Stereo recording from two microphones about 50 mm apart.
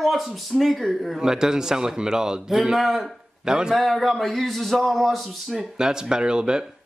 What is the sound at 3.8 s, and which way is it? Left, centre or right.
A man's voice, centre.